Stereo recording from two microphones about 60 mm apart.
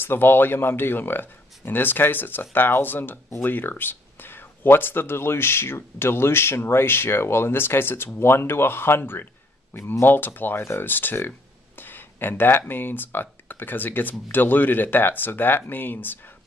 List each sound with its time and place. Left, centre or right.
0.0 s speech: left